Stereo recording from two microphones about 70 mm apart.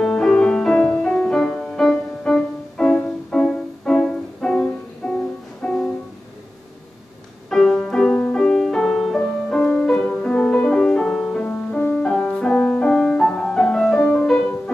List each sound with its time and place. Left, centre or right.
0.0 s music: centre
7.4 s music: centre
11.4 s music: left
11.9 s music: centre